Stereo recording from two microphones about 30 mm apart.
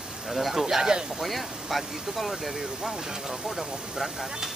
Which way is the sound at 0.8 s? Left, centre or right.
Right.